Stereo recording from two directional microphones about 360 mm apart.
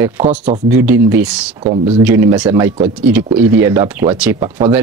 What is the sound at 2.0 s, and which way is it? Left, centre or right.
Speech, centre.